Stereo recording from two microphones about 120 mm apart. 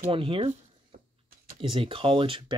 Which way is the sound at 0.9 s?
90° right.